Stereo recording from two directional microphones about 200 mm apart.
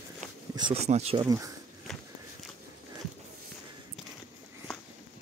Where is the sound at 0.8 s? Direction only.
30° right (ahead or behind).